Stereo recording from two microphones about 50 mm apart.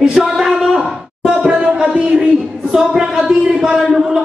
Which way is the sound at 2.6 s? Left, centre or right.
Centre.